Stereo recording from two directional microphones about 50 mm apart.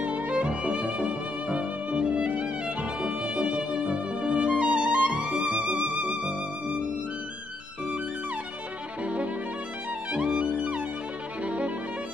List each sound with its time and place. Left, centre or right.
0.0 s music: right
9.0 s violin: right
10.1 s music: right
11.4 s violin: right